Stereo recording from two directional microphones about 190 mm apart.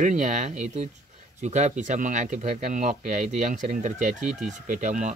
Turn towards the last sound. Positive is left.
turn(degrees=-40)  # may be behind; listen again after turning